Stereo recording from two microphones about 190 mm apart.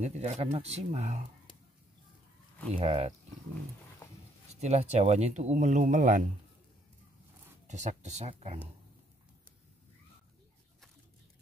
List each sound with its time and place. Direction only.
0.0 s speech: 35° right (ahead or behind)
2.8 s speech: 35° right (ahead or behind)
4.5 s speech: 35° right (ahead or behind)
7.6 s speech: 40° right (ahead or behind)